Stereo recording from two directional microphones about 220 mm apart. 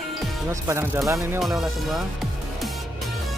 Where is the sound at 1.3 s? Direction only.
Centre (ahead or behind).